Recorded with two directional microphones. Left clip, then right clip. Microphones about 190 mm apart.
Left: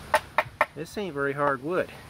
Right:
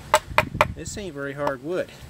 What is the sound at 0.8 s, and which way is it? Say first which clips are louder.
Speech: left 3 dB; 10° right (ahead or behind).